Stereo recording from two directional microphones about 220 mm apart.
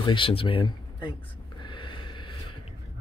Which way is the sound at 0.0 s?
25° left (ahead or behind).